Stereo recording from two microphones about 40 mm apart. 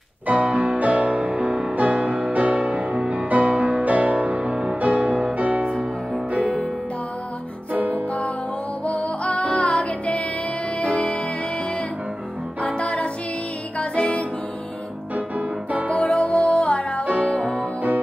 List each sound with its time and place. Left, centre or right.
0.3 s music: right
7.7 s music: right
8.8 s music: left
12.6 s music: left
15.1 s music: right
15.9 s music: left
17.0 s music: right